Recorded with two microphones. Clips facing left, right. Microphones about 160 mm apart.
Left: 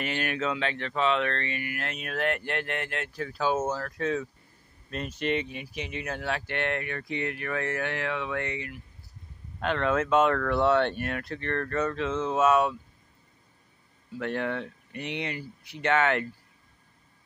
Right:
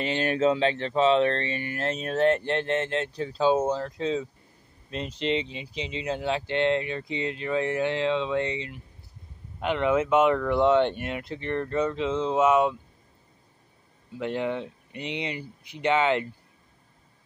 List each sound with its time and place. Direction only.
0.0 s speech: 25° right (ahead or behind)
14.1 s speech: 15° right (ahead or behind)